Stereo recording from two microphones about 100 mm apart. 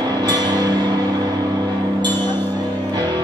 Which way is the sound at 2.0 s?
45° right (ahead or behind).